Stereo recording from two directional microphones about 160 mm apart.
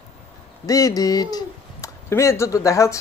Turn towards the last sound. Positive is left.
turn(degrees=20)  # may be behind; listen again after turning